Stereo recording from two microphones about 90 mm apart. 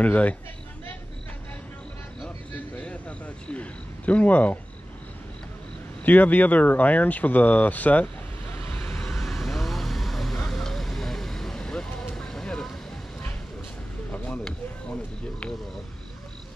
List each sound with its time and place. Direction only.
0.0 s speech: 15° left (ahead or behind)
2.2 s cricket: 15° left (ahead or behind)
6.0 s speech: 20° left (ahead or behind)
8.8 s vehicle: 5° left (ahead or behind)
14.1 s a sound: 15° left (ahead or behind)